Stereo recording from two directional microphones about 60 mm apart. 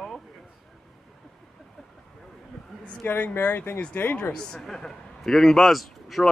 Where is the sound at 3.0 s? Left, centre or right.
Left.